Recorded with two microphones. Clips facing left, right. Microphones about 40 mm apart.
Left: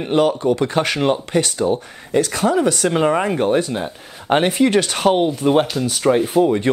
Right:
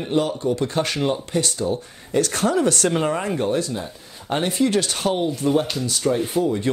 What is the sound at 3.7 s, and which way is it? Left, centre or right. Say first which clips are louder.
Speech: left 5 dB; left.